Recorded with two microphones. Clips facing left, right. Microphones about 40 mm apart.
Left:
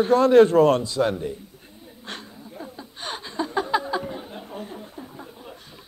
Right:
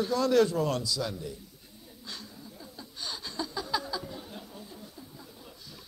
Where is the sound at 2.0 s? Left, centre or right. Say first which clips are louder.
Left 7 dB; left.